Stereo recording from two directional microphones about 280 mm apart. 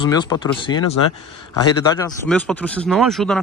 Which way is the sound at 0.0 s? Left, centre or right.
Centre.